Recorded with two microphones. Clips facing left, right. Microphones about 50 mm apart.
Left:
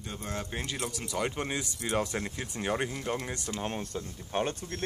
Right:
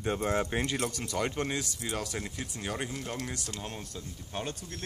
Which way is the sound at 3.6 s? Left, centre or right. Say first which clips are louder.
Left 6 dB; left.